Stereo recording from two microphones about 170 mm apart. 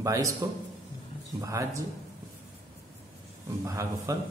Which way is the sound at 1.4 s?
20° right (ahead or behind).